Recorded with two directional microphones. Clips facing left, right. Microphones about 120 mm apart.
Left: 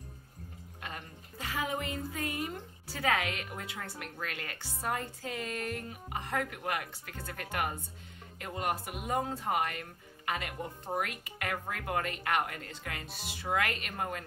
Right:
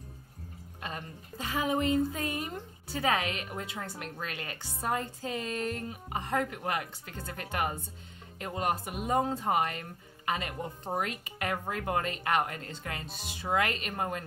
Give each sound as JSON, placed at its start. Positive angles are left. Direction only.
{"t": 0.7, "sound": "a woman's voice", "side_deg": -25}